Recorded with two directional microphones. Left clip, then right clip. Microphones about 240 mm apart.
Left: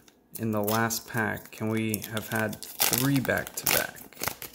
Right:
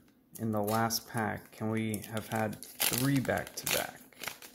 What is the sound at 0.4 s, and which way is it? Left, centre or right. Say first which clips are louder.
Speech: left 4 dB; centre.